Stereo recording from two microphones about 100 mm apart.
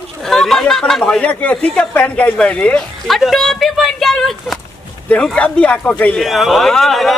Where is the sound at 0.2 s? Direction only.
5° left (ahead or behind).